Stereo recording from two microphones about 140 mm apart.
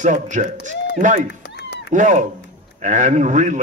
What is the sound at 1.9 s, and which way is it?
A man's voice, 65° right (ahead or behind).